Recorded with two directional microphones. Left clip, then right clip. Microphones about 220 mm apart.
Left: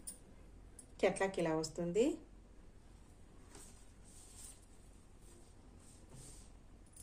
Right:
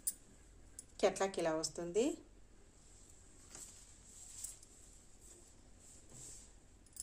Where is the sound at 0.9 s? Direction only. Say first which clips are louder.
Even; 20° right (ahead or behind).